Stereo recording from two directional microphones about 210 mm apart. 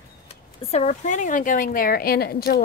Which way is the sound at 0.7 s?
30° left (ahead or behind).